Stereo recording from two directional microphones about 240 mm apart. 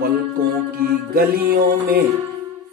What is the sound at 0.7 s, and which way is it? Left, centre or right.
A man's voice, right.